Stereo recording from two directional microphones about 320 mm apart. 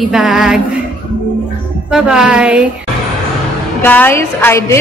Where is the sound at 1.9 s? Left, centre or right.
Centre.